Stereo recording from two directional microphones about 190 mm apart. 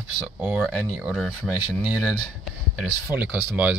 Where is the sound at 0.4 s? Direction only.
5° right (ahead or behind).